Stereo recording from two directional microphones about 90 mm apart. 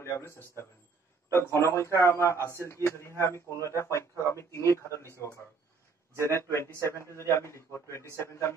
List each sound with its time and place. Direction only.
0.0 s speech: 30° left (ahead or behind)
6.1 s speech: 35° right (ahead or behind)
6.5 s speech: 30° left (ahead or behind)